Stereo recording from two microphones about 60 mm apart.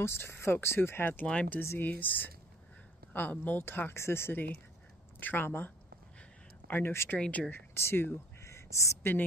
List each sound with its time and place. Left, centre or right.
0.0 s speech: left
1.2 s speech: centre
1.8 s speech: left
6.7 s speech: left
7.2 s speech: left
7.7 s speech: left
8.5 s duck: left